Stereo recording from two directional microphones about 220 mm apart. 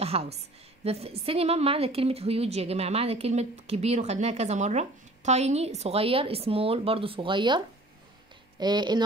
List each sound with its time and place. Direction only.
0.0 s a woman's voice: 25° right (ahead or behind)